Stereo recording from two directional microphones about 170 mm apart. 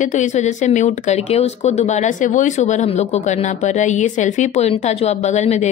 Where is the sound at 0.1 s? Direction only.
45° left (ahead or behind).